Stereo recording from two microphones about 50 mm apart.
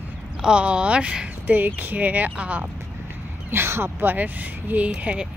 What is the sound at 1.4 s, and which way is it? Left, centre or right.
Speech, right.